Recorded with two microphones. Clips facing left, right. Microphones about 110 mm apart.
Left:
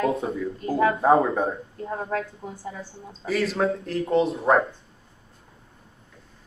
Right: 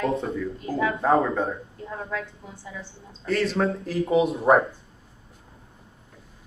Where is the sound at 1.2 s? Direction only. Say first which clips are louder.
Left 1 dB; 25° left (ahead or behind).